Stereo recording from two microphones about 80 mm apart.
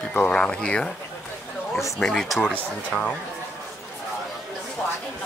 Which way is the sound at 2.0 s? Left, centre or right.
Centre.